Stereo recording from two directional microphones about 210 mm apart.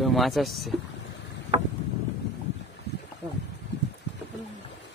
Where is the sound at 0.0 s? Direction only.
Centre (ahead or behind).